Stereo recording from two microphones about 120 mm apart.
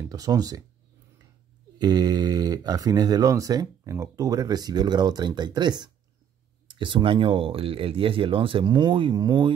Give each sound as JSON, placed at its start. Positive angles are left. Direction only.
{"t": 0.1, "sound": "speech", "side_deg": -30}
{"t": 1.8, "sound": "speech", "side_deg": -35}